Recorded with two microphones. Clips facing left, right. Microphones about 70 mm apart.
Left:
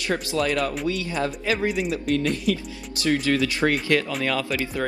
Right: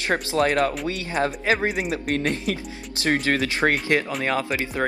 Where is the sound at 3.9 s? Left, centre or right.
Right.